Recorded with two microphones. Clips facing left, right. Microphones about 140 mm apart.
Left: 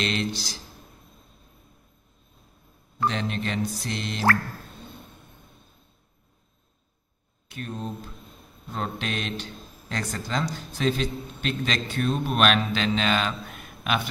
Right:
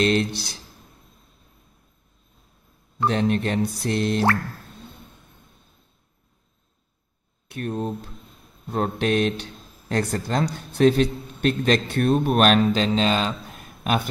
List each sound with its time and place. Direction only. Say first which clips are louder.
0.0 s speech: right 7 dB; 50° right (ahead or behind)
3.1 s a man's voice: right 8 dB; 55° right (ahead or behind)
7.4 s a man's voice: right 7 dB; 55° right (ahead or behind); by 14.0 s 40° right (ahead or behind)